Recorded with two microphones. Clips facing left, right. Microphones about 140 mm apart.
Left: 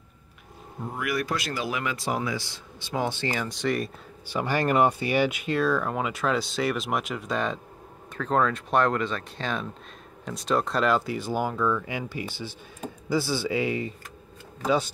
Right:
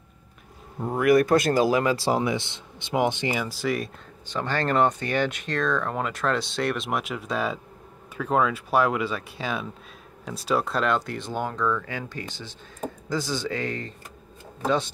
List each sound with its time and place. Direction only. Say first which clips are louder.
0.9 s speech: right 11 dB; 50° right (ahead or behind); by 3.9 s centre (ahead or behind)
4.3 s speech: left 1 dB; 10° left (ahead or behind)